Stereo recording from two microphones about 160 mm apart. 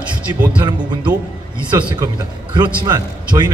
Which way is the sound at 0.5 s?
30° right (ahead or behind).